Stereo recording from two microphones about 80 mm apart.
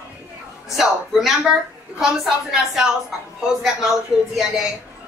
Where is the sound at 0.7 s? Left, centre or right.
Centre.